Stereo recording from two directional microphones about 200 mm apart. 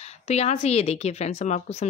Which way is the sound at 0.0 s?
30° left (ahead or behind).